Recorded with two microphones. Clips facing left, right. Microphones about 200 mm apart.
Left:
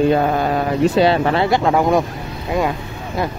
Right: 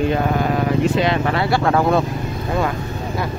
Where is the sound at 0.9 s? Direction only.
35° left (ahead or behind); by 2.1 s 15° left (ahead or behind).